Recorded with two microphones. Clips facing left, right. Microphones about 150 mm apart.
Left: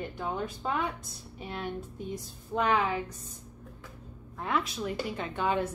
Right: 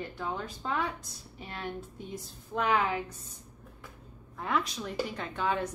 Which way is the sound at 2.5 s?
5° right (ahead or behind).